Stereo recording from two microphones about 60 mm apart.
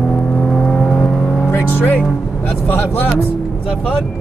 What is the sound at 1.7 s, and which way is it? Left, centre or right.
Speech, left.